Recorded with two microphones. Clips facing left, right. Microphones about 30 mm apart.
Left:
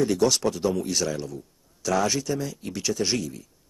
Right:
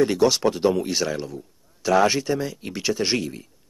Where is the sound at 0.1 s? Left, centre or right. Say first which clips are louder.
Right 3 dB; right.